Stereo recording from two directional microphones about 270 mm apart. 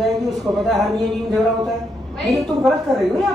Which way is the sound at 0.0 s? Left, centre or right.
Centre.